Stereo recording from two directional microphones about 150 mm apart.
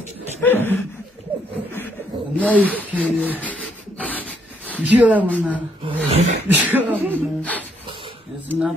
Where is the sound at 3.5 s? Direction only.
10° left (ahead or behind).